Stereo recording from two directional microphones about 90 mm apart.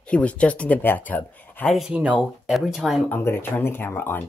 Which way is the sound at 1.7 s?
5° right (ahead or behind).